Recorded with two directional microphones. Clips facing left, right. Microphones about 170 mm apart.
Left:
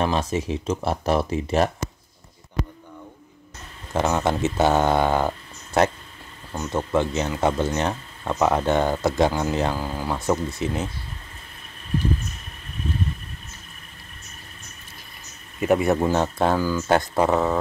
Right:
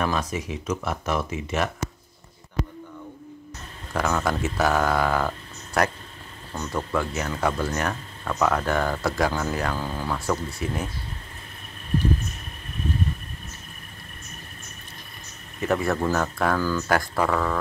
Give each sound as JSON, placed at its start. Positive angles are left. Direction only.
{"t": 0.0, "sound": "speech", "side_deg": 25}
{"t": 3.9, "sound": "speech", "side_deg": 25}
{"t": 9.8, "sound": "speech", "side_deg": 10}
{"t": 15.6, "sound": "speech", "side_deg": 20}
{"t": 16.5, "sound": "speech", "side_deg": 15}